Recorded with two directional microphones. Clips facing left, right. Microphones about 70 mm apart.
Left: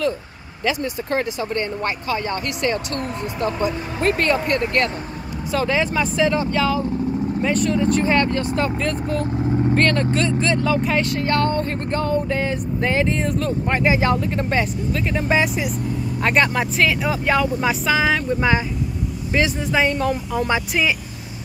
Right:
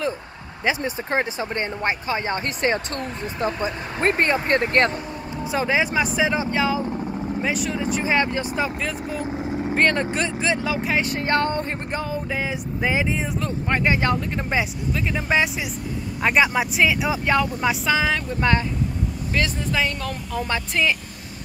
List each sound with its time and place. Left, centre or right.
0.7 s speech: right
5.5 s speech: centre
8.6 s speech: centre
11.0 s speech: right
12.0 s speech: centre
19.3 s speech: centre